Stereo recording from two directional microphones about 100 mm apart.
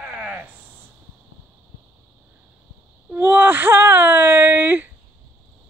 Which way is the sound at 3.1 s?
20° right (ahead or behind).